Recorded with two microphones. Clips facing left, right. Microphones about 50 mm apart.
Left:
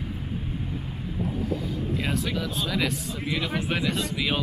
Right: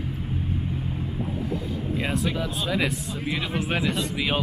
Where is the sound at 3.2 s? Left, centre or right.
Centre.